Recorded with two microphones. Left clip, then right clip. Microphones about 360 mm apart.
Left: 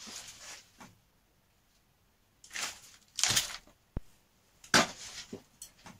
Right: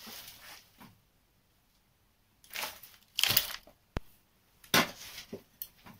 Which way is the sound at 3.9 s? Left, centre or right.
Right.